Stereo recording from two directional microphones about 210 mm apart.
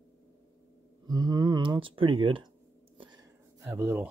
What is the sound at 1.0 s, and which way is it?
Speech, 20° right (ahead or behind).